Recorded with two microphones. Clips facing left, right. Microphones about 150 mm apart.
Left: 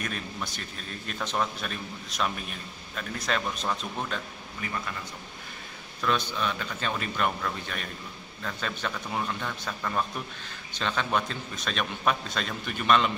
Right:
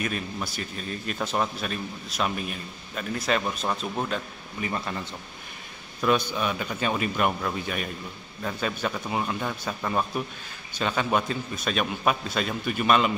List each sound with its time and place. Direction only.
0.0 s a man's voice: 5° right (ahead or behind)
4.6 s a man's voice: 30° right (ahead or behind)
5.9 s a man's voice: 10° right (ahead or behind)